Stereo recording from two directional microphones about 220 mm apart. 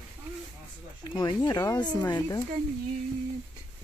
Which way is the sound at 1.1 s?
20° left (ahead or behind).